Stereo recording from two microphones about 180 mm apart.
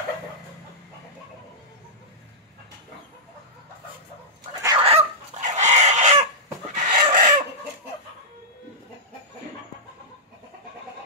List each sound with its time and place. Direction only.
4.7 s chicken: 35° right (ahead or behind)